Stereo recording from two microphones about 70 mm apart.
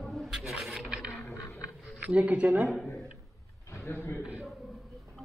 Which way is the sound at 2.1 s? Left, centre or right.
Centre.